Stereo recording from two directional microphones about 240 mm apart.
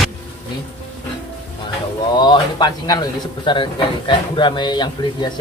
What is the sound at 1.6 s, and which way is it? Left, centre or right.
A man's voice, centre.